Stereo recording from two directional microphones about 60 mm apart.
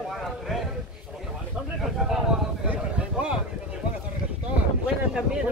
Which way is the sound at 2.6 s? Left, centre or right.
Right.